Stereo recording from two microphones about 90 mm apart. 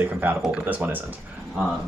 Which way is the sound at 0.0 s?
20° right (ahead or behind).